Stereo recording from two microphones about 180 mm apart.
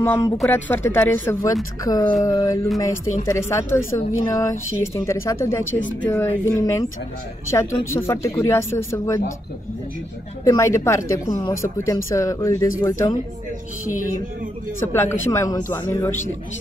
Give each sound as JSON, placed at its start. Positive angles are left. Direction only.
{"t": 0.0, "sound": "speech", "side_deg": 15}
{"t": 4.3, "sound": "a sound", "side_deg": 20}
{"t": 4.9, "sound": "speech", "side_deg": 15}
{"t": 5.6, "sound": "speech", "side_deg": 90}
{"t": 6.0, "sound": "speech", "side_deg": 15}
{"t": 10.4, "sound": "speech", "side_deg": 15}
{"t": 14.8, "sound": "speech", "side_deg": 15}